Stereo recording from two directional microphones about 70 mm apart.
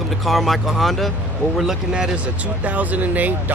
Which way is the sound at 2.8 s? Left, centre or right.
Right.